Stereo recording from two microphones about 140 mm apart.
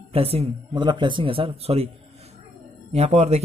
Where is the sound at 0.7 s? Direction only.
35° right (ahead or behind).